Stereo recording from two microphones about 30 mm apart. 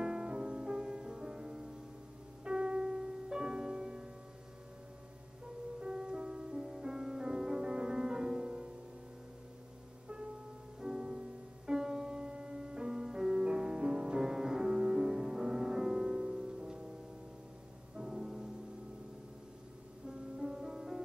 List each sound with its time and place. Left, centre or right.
0.0 s music: right
5.8 s music: right
10.8 s music: right
17.9 s music: right
20.1 s music: right